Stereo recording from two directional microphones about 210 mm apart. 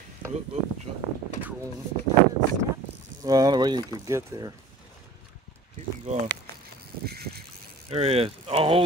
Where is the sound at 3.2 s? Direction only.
15° right (ahead or behind).